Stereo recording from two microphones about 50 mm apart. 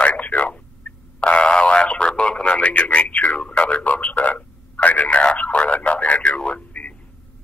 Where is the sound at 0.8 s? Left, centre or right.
Left.